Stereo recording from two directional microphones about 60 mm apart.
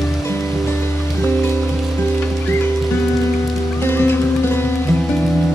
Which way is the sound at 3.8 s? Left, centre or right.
Left.